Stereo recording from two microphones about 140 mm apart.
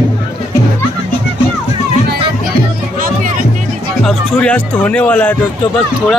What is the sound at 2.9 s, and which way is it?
Music, 80° right.